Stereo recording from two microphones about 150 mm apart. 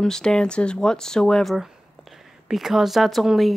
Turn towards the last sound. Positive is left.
turn(degrees=0)  # may be behind; listen again after turning